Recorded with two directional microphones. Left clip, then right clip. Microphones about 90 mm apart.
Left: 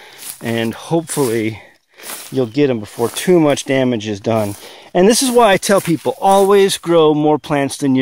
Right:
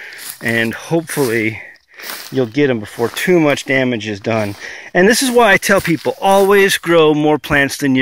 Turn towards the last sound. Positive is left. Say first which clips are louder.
# right 3 dB
turn(degrees=20)  # may be behind; listen again after turning